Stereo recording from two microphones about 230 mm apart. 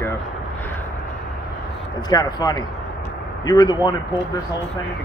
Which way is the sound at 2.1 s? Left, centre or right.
Centre.